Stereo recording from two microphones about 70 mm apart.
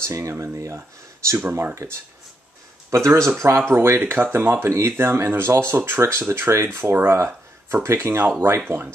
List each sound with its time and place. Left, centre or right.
0.0 s speech: right
2.9 s speech: right